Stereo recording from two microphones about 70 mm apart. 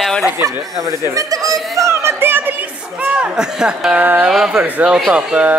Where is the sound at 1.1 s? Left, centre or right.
Right.